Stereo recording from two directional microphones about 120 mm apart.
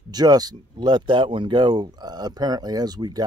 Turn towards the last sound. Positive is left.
turn(degrees=-35)  # may be behind; listen again after turning